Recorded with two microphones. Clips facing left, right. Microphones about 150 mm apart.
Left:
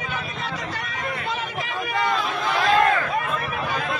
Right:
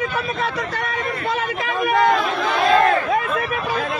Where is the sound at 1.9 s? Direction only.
55° right (ahead or behind).